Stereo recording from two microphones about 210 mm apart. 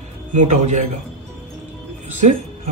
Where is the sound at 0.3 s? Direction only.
35° right (ahead or behind).